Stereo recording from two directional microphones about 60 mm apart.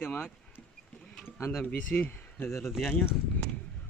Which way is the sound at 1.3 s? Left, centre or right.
Left.